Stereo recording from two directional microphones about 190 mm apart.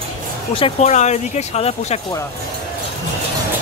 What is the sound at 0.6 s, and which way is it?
Speech, 35° left (ahead or behind).